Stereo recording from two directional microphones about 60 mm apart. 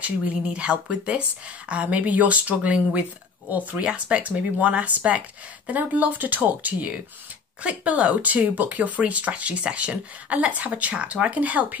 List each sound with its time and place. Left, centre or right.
0.0 s speech: centre